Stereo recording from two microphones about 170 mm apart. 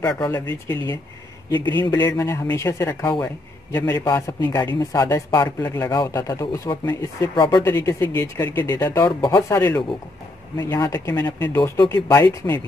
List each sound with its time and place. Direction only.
0.1 s speech: 5° left (ahead or behind)
1.7 s a man's voice: 25° left (ahead or behind)
2.0 s a man's voice: 15° left (ahead or behind)
8.5 s a man's voice: 25° left (ahead or behind)